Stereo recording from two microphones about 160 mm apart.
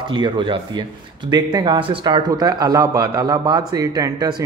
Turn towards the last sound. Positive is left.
turn(degrees=-25)  # may be behind; listen again after turning